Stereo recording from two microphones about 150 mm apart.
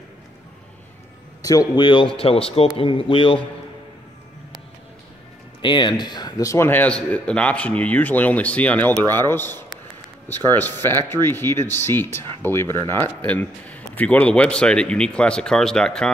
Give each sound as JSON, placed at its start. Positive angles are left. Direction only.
{"t": 1.4, "sound": "speech", "side_deg": 25}
{"t": 5.6, "sound": "a man's voice", "side_deg": 30}